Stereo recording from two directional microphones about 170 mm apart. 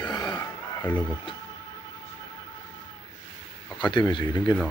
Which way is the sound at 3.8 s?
25° left (ahead or behind).